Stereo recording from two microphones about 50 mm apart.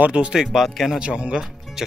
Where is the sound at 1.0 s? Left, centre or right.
Right.